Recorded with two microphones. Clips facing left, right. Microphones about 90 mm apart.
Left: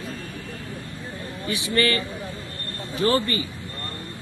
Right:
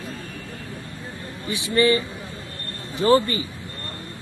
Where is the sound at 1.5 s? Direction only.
20° right (ahead or behind).